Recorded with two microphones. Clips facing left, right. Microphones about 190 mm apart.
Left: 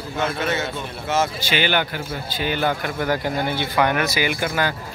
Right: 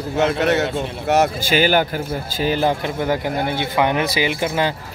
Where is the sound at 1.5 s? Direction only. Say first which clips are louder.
Right 5 dB; 40° right (ahead or behind).